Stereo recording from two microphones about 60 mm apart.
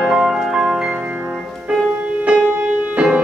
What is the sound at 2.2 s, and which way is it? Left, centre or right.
Music, centre.